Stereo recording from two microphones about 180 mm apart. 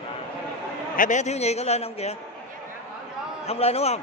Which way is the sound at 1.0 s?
45° left (ahead or behind).